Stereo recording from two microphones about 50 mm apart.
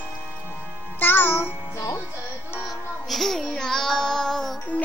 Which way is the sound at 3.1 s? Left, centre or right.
Centre.